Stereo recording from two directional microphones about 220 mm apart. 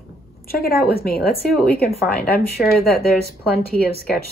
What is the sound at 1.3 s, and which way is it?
Speech, 30° right (ahead or behind).